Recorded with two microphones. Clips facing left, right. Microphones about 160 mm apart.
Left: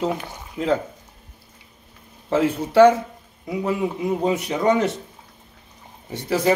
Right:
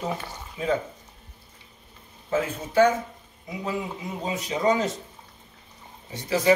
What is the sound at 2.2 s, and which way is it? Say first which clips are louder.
A man's voice: left 6 dB; 75° left (ahead or behind).